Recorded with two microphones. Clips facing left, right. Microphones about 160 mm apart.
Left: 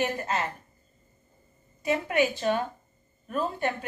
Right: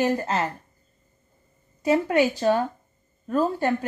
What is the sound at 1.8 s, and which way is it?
A woman's voice, 35° right (ahead or behind).